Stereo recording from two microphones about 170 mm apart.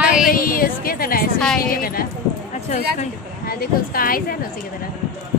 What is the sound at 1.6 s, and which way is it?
Speech, 60° left (ahead or behind).